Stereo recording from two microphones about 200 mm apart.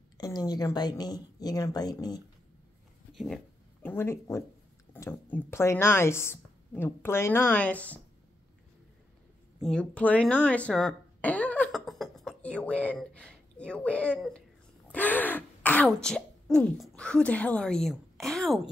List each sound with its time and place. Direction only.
0.2 s speech: 20° left (ahead or behind)
3.8 s speech: 10° left (ahead or behind)
9.6 s a sound: 5° left (ahead or behind)
14.9 s throat clearing: 10° left (ahead or behind)